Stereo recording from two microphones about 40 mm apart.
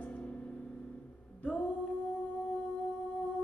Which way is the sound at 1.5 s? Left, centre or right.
Left.